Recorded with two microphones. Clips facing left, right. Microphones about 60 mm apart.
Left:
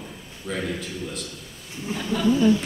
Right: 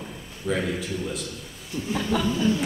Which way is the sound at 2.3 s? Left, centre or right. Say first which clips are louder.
Left 9 dB; left.